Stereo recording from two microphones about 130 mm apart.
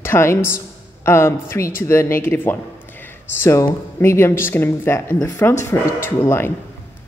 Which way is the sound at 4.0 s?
20° left (ahead or behind).